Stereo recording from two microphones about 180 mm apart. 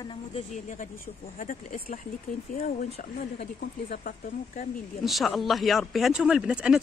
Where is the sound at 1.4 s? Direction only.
45° left (ahead or behind).